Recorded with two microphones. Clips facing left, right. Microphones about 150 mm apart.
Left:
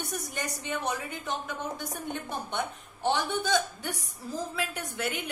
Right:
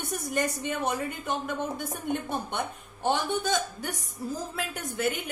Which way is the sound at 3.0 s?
50° right (ahead or behind).